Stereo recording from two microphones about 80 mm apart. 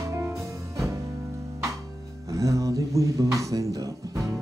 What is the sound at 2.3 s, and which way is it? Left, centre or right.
Speech, right.